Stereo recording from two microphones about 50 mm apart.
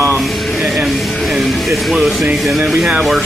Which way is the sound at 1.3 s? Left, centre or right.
Centre.